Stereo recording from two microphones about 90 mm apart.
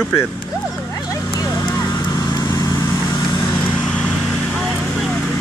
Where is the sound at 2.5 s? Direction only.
30° left (ahead or behind).